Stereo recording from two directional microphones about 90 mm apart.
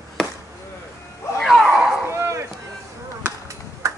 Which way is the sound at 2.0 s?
30° right (ahead or behind).